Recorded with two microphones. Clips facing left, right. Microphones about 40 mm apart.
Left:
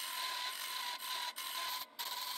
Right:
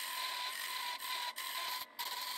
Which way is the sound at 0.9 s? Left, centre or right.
Centre.